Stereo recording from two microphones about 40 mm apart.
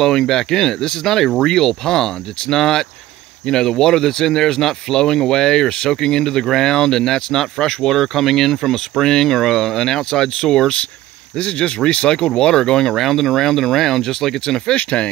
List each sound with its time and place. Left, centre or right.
0.0 s speech: centre
11.3 s speech: left
12.9 s speech: centre
14.8 s speech: left